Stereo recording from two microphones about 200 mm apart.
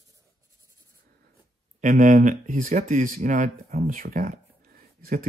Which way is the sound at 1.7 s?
40° right (ahead or behind).